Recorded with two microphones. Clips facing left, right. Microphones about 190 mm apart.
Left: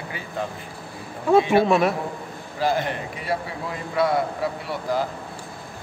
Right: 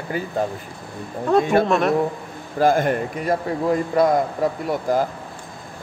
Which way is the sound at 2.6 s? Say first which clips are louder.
Right 6 dB; 50° right (ahead or behind).